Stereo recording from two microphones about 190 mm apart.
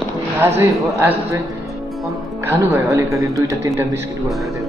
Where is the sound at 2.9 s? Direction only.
15° right (ahead or behind).